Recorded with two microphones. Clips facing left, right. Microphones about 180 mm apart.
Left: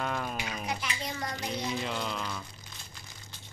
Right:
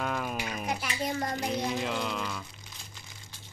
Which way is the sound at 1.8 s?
Centre (ahead or behind).